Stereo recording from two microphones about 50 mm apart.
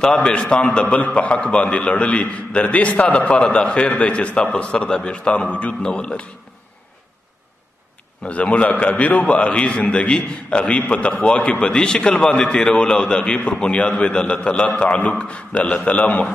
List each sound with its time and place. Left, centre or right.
0.0 s a man's voice: left
8.3 s a man's voice: left